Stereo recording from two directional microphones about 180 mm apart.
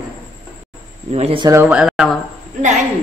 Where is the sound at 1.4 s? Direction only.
15° right (ahead or behind).